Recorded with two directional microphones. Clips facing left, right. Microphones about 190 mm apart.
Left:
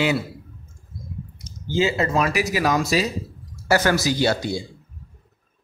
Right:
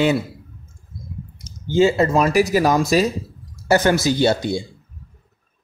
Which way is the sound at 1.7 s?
45° right (ahead or behind).